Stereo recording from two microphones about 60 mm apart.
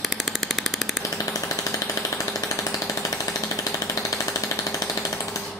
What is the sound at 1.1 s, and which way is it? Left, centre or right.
Jackhammer, left.